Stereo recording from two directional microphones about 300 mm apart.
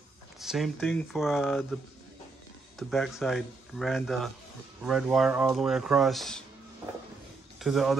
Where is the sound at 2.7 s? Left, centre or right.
Centre.